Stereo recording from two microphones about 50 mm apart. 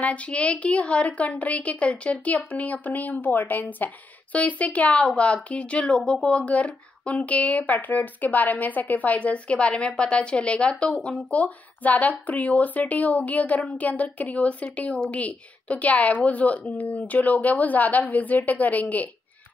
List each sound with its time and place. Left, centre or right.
0.0 s a woman's voice: left